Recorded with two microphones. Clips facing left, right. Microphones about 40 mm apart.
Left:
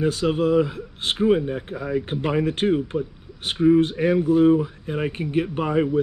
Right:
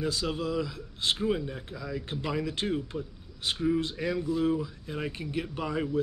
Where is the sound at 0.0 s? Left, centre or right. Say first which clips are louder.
Left 10 dB; left.